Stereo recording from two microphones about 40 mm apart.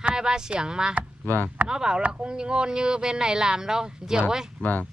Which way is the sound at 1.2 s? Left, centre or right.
Left.